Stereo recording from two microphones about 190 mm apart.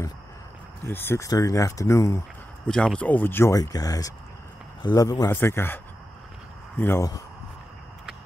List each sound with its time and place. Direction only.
0.8 s speech: 10° left (ahead or behind)
2.7 s speech: 5° left (ahead or behind)
6.8 s speech: 15° left (ahead or behind)